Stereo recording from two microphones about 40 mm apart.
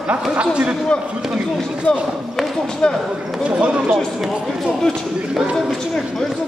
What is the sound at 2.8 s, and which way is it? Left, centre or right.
Speech, left.